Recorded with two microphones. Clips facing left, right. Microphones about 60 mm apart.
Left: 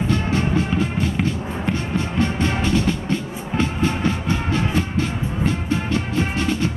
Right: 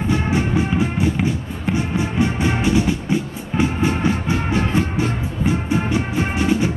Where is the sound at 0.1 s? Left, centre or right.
Centre.